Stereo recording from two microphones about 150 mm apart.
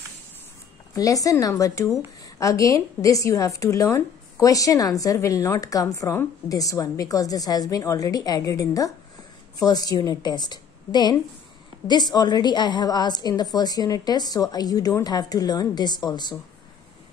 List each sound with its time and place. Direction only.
0.9 s a woman's voice: 25° left (ahead or behind)